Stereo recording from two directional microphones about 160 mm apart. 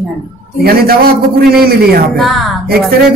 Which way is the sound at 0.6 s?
70° right (ahead or behind).